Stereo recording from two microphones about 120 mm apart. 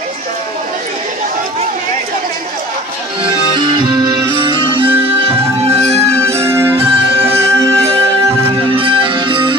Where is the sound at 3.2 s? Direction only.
40° right (ahead or behind); by 6.0 s 60° right (ahead or behind).